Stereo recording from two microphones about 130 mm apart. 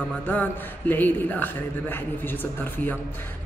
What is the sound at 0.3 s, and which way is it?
Speech, 15° left (ahead or behind).